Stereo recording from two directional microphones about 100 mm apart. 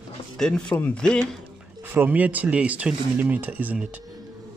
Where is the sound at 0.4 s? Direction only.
5° left (ahead or behind).